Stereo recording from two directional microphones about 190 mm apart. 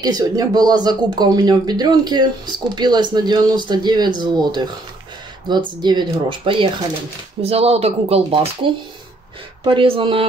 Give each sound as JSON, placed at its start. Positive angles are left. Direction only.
{"t": 0.0, "sound": "speech", "side_deg": -20}